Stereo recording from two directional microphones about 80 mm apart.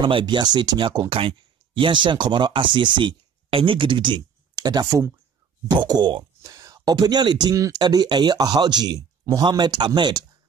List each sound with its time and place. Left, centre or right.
0.0 s speech: right
1.2 s speech: right
4.6 s speech: right
6.4 s speech: right
7.5 s speech: right
9.4 s speech: right